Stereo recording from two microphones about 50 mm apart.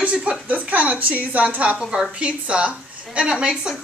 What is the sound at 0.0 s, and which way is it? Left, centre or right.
A woman's voice, right.